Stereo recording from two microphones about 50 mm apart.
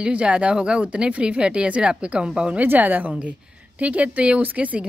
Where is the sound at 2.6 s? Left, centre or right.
Right.